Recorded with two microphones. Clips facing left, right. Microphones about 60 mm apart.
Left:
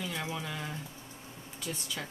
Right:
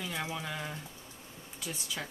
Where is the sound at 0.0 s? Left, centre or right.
Centre.